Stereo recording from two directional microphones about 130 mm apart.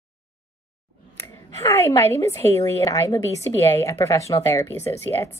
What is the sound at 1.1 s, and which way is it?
A woman's voice, 25° left (ahead or behind).